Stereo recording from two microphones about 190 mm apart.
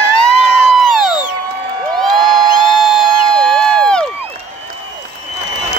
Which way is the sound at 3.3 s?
5° left (ahead or behind).